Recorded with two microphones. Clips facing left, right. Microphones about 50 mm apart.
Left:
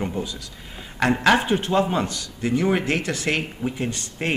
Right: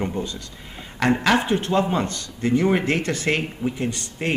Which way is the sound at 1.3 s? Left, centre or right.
Centre.